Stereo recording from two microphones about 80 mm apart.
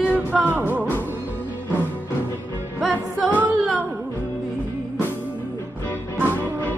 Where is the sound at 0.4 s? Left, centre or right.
Right.